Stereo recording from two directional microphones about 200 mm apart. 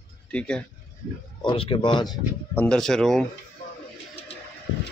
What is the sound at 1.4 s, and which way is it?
Speech, 25° left (ahead or behind).